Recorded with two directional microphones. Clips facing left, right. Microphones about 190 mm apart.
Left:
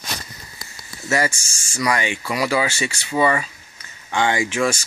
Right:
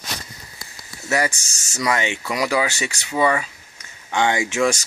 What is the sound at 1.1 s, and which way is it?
Speech, 15° right (ahead or behind).